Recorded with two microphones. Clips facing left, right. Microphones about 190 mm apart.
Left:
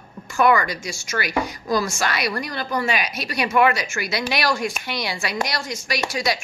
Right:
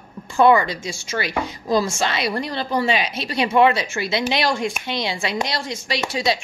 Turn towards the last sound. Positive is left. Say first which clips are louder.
# right 2 dB
turn(degrees=-25)  # may be behind; listen again after turning